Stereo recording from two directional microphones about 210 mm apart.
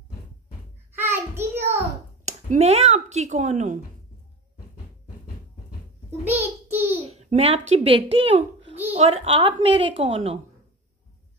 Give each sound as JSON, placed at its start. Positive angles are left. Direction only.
{"t": 0.9, "sound": "child singing", "side_deg": -10}
{"t": 2.5, "sound": "a woman's voice", "side_deg": -30}
{"t": 6.2, "sound": "child singing", "side_deg": -10}
{"t": 7.0, "sound": "a child's voice", "side_deg": -30}